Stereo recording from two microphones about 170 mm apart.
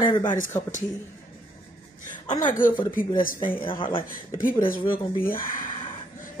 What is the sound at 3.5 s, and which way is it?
Speech, 30° left (ahead or behind).